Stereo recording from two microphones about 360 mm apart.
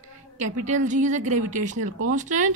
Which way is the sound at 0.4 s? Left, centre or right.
Centre.